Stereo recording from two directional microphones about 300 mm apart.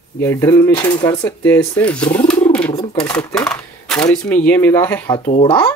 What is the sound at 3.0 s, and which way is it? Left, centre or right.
Speech, centre.